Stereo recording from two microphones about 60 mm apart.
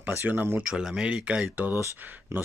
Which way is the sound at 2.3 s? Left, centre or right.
Right.